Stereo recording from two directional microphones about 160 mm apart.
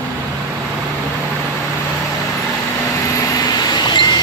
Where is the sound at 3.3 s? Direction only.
25° left (ahead or behind).